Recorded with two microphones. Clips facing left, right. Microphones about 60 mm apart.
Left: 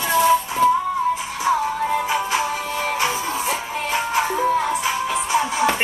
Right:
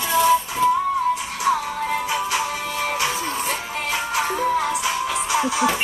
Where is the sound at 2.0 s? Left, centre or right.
Left.